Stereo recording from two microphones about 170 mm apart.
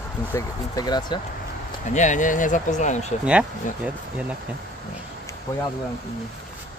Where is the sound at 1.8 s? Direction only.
45° left (ahead or behind).